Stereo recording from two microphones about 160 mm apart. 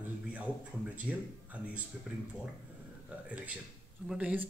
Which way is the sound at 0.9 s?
10° right (ahead or behind).